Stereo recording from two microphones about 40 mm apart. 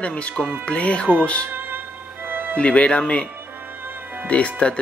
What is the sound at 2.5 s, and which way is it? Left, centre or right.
Speech, left.